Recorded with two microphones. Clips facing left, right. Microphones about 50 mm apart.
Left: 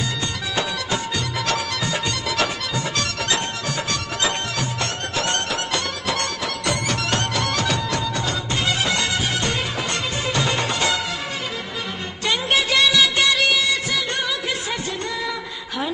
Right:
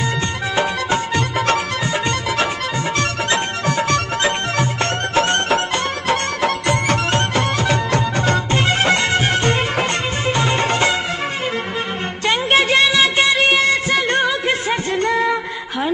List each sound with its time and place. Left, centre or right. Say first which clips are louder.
0.6 s music: right 6 dB; right
3.0 s music: right 5 dB; right
12.3 s music: right 5 dB; right